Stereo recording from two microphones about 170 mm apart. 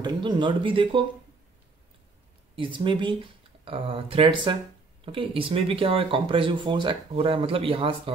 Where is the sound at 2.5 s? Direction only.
30° right (ahead or behind).